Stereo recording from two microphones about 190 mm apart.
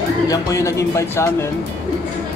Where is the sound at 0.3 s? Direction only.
15° left (ahead or behind).